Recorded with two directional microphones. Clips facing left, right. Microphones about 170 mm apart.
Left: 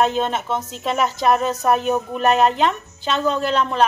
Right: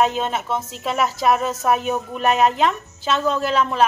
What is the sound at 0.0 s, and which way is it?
Speech, centre (ahead or behind).